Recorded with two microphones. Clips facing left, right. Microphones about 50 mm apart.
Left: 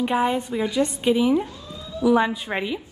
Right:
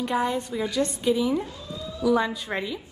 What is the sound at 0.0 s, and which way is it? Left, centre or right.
A woman's voice, left.